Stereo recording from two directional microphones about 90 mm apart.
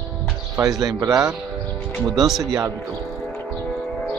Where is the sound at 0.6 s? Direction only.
45° right (ahead or behind).